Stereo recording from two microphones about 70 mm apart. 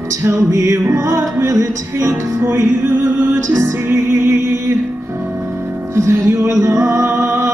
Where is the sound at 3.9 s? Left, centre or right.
Right.